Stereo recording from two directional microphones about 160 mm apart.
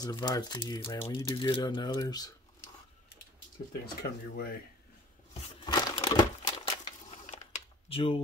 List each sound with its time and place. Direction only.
0.0 s speech: 25° left (ahead or behind)
3.8 s speech: 90° left
5.7 s crumpling: 25° left (ahead or behind)